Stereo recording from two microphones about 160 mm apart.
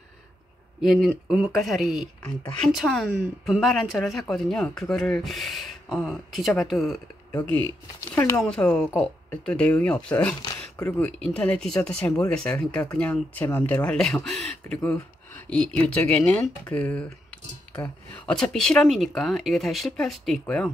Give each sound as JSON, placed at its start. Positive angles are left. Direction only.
{"t": 0.7, "sound": "speech", "side_deg": -5}
{"t": 8.1, "sound": "speech", "side_deg": 15}
{"t": 8.4, "sound": "speech", "side_deg": 5}